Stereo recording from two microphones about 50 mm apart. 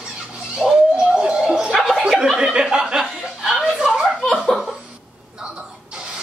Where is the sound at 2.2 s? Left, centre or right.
Centre.